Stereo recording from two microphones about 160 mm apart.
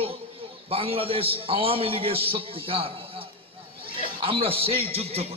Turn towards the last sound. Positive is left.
turn(degrees=-40)  # may be behind; listen again after turning